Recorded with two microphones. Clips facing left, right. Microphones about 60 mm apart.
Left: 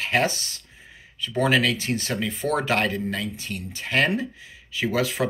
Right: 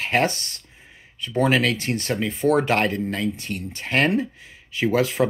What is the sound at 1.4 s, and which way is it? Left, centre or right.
Speech, right.